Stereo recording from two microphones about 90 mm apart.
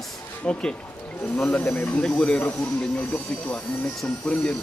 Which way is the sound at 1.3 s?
20° left (ahead or behind).